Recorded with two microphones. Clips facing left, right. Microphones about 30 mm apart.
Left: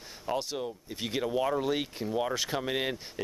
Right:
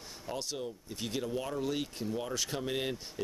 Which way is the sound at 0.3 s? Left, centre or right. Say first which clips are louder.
Left 6 dB; centre.